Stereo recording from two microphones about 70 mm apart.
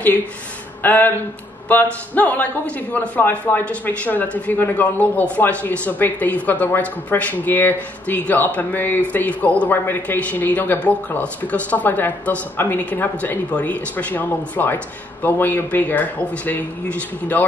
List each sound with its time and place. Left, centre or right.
0.8 s a man's voice: left